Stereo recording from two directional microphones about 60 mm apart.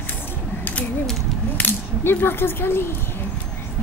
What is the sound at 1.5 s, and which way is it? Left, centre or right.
Speech, left.